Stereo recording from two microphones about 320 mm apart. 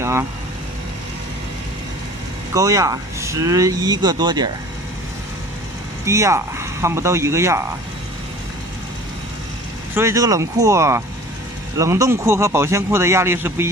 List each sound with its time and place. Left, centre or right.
0.0 s speech: centre
2.5 s a man's voice: centre
6.0 s a man's voice: centre
9.9 s a man's voice: centre